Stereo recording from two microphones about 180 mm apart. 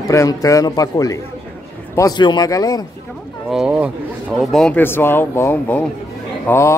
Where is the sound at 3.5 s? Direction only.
5° right (ahead or behind).